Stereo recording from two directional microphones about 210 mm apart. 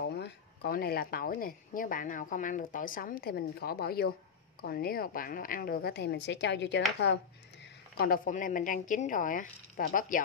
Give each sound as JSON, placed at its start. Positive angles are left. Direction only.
{"t": 0.0, "sound": "speech", "side_deg": 50}
{"t": 8.0, "sound": "a woman's voice", "side_deg": 45}